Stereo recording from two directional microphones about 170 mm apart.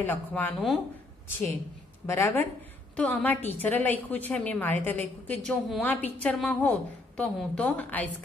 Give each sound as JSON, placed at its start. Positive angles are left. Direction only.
{"t": 0.0, "sound": "a woman's voice", "side_deg": 10}
{"t": 2.0, "sound": "a woman's voice", "side_deg": 15}